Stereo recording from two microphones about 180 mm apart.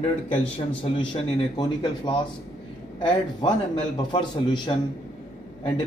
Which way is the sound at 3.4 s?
25° left (ahead or behind).